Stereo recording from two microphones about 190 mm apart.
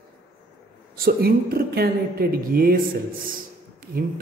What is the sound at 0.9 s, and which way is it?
A woman's voice, 55° right (ahead or behind).